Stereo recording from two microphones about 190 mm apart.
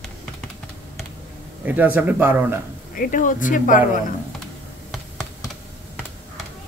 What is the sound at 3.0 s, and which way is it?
Speech, 45° left (ahead or behind).